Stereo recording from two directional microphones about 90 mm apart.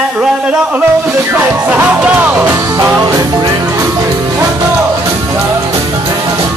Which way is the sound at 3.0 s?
40° right (ahead or behind).